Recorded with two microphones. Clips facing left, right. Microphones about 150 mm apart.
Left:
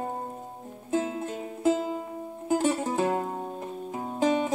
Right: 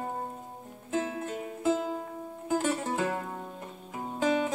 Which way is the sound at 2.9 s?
30° left (ahead or behind).